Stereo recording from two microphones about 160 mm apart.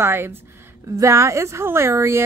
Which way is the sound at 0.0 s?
15° right (ahead or behind).